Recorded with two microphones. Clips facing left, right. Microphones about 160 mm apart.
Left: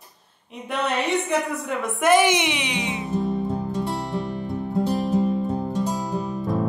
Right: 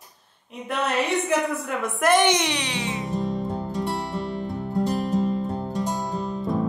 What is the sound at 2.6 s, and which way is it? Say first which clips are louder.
Music: left 1 dB; 15° left (ahead or behind).